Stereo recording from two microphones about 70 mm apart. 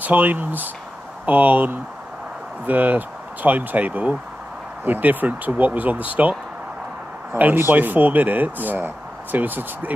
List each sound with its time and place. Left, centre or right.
0.0 s speech: right
7.3 s speech: right